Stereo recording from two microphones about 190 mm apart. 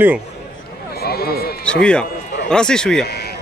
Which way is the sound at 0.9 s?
55° left (ahead or behind).